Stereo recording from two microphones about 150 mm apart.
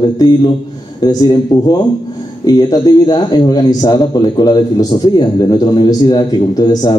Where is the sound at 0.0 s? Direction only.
30° left (ahead or behind).